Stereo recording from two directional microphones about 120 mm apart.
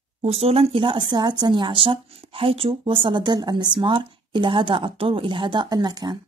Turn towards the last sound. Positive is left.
turn(degrees=-35)  # may be behind; listen again after turning